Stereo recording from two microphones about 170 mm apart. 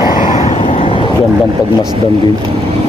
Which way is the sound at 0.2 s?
45° left (ahead or behind).